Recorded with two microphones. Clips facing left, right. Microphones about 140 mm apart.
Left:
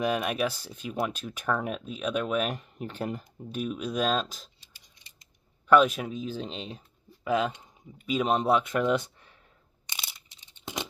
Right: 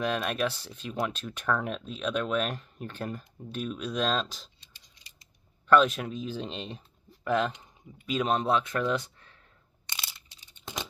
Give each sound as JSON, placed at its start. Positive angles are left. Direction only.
{"t": 0.0, "sound": "speech", "side_deg": 10}
{"t": 5.7, "sound": "speech", "side_deg": 10}
{"t": 9.9, "sound": "a sound", "side_deg": 20}